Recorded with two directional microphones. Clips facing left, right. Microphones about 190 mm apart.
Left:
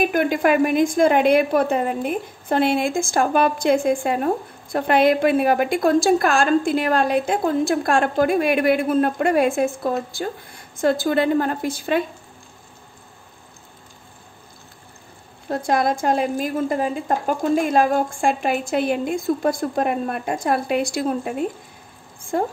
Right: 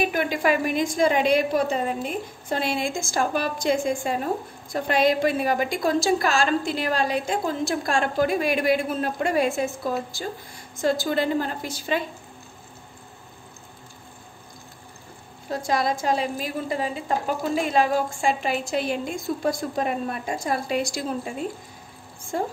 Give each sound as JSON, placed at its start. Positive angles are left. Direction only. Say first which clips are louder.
{"t": 0.0, "sound": "a woman's voice", "louder": "left 5 dB", "side_deg": 50}
{"t": 15.5, "sound": "a woman's voice", "louder": "left 4 dB", "side_deg": 55}